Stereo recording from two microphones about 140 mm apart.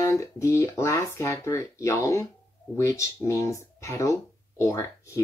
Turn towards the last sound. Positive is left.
turn(degrees=20)  # may be behind; listen again after turning